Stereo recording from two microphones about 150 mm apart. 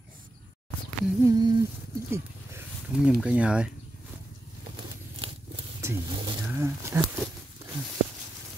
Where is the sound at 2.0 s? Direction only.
15° right (ahead or behind).